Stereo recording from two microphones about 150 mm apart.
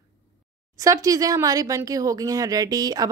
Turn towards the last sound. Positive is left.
turn(degrees=-25)  # may be behind; listen again after turning